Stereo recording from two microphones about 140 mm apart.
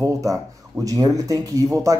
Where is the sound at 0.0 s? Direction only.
25° right (ahead or behind).